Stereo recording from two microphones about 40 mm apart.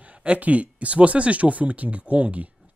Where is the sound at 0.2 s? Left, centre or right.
Right.